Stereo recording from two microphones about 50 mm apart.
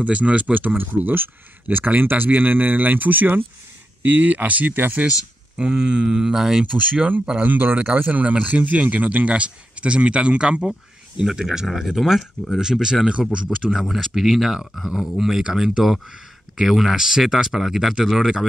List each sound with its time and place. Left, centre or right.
0.0 s speech: right
5.6 s speech: right
6.6 s speech: right; by 12.3 s centre
12.5 s speech: centre